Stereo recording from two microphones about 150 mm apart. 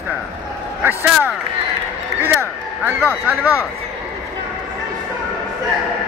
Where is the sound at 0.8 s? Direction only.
15° right (ahead or behind).